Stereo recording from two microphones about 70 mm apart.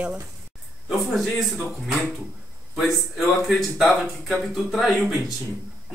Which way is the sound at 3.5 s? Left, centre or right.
Centre.